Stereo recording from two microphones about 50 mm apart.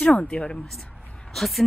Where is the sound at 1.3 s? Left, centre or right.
Centre.